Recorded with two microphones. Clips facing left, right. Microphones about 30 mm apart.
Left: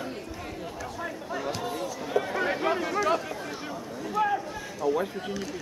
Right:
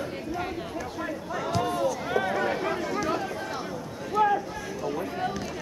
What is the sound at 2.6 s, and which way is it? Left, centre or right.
Speech, centre.